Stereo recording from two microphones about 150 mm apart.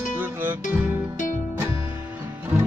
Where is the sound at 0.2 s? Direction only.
15° right (ahead or behind).